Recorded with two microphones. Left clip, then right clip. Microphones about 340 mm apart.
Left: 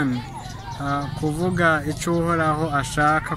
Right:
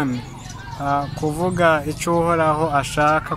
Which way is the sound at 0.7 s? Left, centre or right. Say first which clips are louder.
Right 5 dB; centre.